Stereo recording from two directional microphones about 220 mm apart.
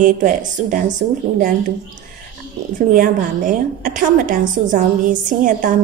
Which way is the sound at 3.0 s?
35° right (ahead or behind).